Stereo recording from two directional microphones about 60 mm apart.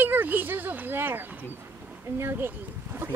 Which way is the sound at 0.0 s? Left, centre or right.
Right.